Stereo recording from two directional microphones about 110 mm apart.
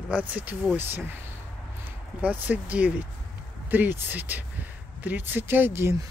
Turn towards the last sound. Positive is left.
turn(degrees=-20)  # may be behind; listen again after turning